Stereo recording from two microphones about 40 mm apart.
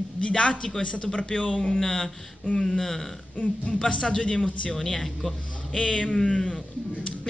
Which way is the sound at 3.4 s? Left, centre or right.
Left.